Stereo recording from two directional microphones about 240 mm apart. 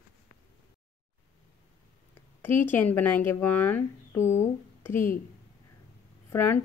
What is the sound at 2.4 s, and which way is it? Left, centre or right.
Speech, centre.